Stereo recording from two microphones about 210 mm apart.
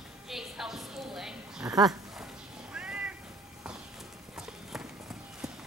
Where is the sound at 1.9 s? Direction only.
Centre (ahead or behind).